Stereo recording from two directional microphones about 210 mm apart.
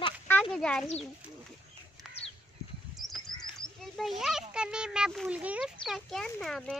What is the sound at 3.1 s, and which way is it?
A child's voice, centre (ahead or behind).